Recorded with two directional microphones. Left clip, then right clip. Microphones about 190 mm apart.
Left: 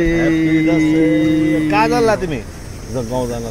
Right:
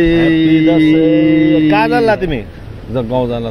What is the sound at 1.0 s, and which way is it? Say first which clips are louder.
Speech: right 4 dB; 50° right (ahead or behind).